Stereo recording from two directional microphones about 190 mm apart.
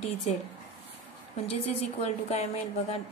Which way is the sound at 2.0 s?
35° left (ahead or behind).